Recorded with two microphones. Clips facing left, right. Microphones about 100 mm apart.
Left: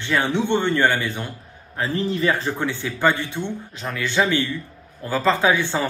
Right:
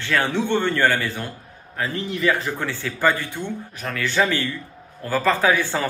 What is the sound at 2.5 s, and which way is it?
A man's voice, 20° left (ahead or behind).